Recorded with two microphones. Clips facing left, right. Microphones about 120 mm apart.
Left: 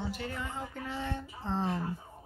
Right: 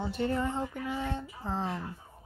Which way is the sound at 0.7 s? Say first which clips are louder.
Right 3 dB; 15° right (ahead or behind).